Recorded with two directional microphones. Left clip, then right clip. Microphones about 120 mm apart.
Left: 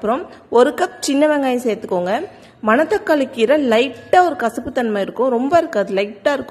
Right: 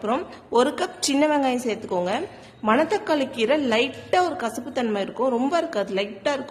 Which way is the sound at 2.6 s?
25° left (ahead or behind).